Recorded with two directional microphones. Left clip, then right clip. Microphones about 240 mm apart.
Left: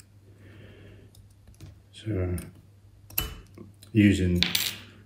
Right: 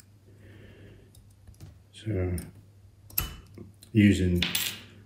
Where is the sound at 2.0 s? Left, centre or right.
Centre.